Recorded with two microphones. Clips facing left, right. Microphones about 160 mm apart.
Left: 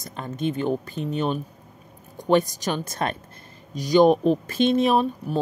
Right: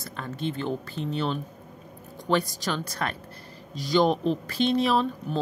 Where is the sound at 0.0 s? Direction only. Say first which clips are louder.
Left 4 dB; 20° left (ahead or behind).